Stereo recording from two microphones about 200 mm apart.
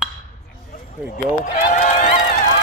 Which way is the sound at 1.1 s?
45° left (ahead or behind).